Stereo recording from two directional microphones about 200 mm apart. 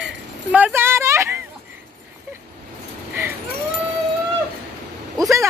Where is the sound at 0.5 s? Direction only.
10° right (ahead or behind).